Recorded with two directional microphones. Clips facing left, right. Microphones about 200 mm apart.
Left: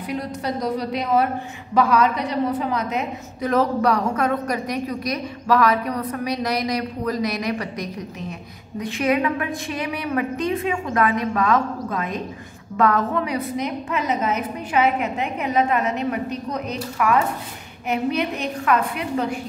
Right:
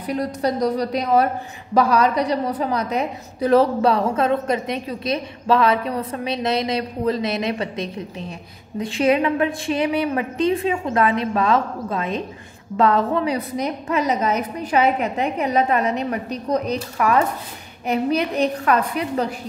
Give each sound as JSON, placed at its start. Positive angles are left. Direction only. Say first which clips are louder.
{"t": 0.0, "sound": "a woman's voice", "louder": "right 4 dB", "side_deg": -40}
{"t": 18.7, "sound": "a woman's voice", "louder": "right 1 dB", "side_deg": -35}